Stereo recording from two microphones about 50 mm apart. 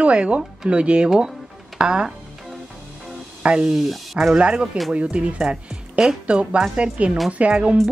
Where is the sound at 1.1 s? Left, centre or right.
Centre.